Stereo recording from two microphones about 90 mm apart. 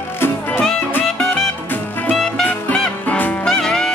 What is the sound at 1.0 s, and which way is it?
Music, 5° left (ahead or behind).